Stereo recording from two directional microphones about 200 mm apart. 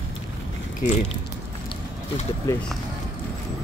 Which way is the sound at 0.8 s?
35° left (ahead or behind).